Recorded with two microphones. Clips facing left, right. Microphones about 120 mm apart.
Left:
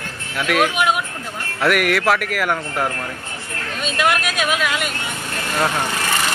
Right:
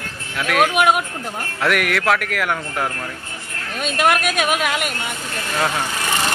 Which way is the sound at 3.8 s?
50° right (ahead or behind).